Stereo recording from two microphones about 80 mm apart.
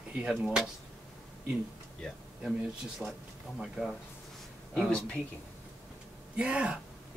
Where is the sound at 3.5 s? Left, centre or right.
Centre.